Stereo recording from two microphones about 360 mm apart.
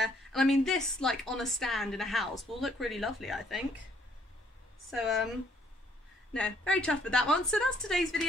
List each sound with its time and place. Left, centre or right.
0.0 s a woman's voice: centre
4.9 s a woman's voice: centre
6.3 s a woman's voice: centre